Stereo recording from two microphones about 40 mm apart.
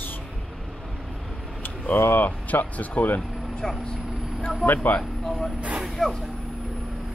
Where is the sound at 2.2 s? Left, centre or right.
Left.